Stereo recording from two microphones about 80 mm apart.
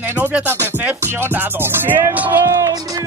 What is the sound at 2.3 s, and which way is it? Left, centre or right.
Speech, right.